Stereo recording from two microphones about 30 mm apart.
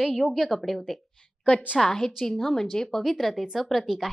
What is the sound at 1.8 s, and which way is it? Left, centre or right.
A child's voice, centre.